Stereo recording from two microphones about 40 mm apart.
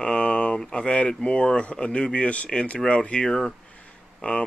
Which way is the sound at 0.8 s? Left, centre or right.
Left.